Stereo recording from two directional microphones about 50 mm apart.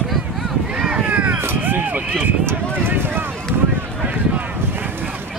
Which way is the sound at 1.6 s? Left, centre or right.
Right.